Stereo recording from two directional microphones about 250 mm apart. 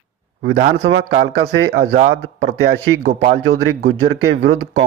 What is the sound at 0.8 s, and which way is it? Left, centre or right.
Speech, right.